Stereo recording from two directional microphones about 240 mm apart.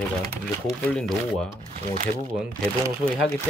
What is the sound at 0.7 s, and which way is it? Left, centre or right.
Speech, centre.